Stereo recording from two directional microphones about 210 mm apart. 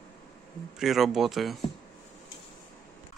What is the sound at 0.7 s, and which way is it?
Speech, centre (ahead or behind).